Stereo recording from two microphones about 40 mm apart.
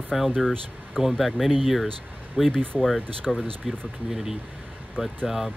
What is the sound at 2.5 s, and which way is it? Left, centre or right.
Speech, left.